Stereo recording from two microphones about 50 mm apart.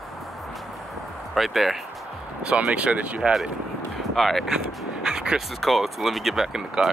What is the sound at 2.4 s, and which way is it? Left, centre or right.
Speech, right.